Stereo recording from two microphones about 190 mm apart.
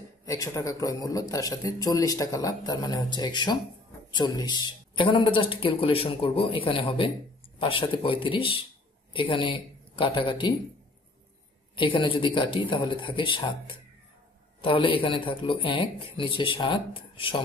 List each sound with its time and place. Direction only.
0.2 s a man's voice: 15° left (ahead or behind)
11.7 s a man's voice: 25° left (ahead or behind)